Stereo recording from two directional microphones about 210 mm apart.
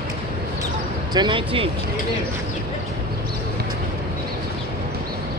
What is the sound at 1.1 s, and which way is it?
Speech, 20° right (ahead or behind).